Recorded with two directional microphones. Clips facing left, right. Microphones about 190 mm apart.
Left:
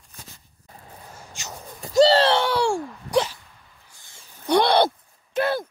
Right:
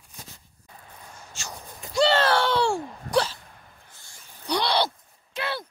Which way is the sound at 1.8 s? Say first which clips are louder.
Left 5 dB; 35° left (ahead or behind).